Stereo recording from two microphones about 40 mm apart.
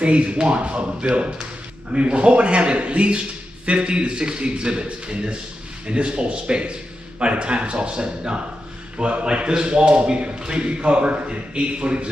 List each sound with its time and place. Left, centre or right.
0.0 s a man's voice: right